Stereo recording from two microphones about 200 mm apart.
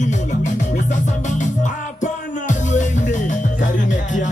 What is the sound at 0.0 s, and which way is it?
Music, 35° left (ahead or behind).